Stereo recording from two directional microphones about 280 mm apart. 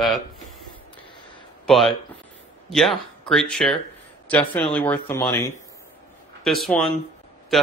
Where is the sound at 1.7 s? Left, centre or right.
Centre.